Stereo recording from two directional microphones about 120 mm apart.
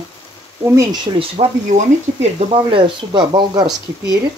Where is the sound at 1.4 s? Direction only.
65° right (ahead or behind).